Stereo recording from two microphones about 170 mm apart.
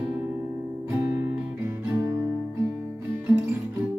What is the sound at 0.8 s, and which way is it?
Music, 15° right (ahead or behind).